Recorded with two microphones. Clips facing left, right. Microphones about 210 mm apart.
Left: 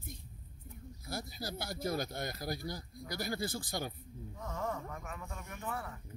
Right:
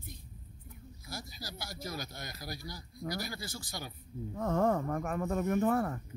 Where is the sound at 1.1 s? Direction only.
55° left (ahead or behind).